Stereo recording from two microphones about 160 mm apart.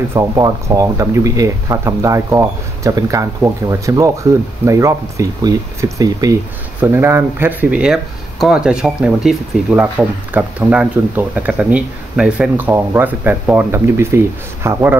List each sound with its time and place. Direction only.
0.1 s speech: 20° right (ahead or behind)